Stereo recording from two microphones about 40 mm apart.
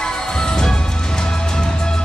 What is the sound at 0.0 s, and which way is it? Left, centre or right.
Music, centre.